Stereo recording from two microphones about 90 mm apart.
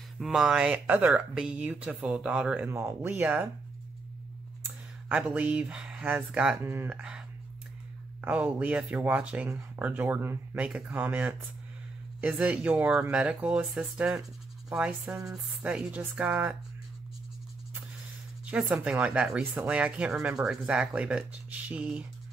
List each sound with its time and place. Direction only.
0.2 s speech: 5° right (ahead or behind)
2.7 s speech: 25° right (ahead or behind)
5.0 s speech: 15° right (ahead or behind)
6.6 s speech: 25° right (ahead or behind)
7.0 s speech: 10° right (ahead or behind)
18.6 s speech: 10° right (ahead or behind)